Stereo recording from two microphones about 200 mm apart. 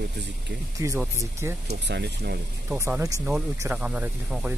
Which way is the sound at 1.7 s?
55° right (ahead or behind).